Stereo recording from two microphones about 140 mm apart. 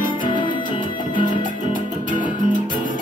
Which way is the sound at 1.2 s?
65° left (ahead or behind).